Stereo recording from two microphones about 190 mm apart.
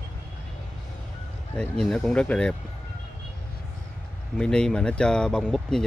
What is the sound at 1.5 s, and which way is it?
Speech, 5° left (ahead or behind).